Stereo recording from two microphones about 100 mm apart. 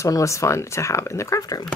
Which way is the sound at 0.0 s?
30° left (ahead or behind).